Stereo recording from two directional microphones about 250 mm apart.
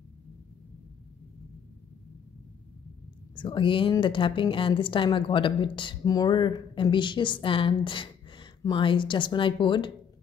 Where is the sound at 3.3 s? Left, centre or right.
Centre.